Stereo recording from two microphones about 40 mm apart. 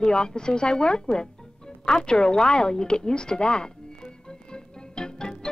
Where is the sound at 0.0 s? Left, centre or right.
Left.